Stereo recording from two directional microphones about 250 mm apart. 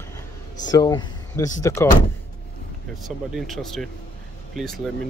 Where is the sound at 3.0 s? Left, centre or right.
Centre.